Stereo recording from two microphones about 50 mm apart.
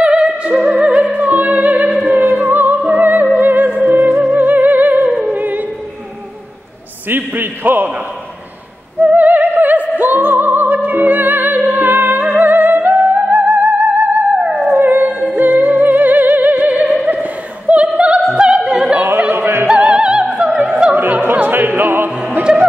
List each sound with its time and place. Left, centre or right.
0.0 s opera: right
2.0 s music: right
7.1 s a sound: right
9.0 s music: right
18.3 s opera: centre
19.3 s opera: right
19.7 s opera: right
21.2 s opera: right